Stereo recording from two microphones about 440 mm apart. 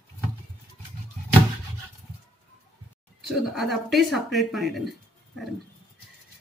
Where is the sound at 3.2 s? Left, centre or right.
Centre.